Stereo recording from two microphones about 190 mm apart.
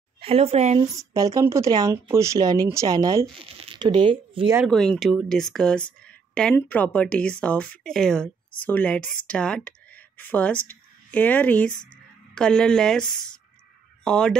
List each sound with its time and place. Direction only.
0.2 s speech: 30° right (ahead or behind)
0.9 s speech: 20° right (ahead or behind)
3.4 s speech: 30° right (ahead or behind)
4.6 s speech: 5° left (ahead or behind)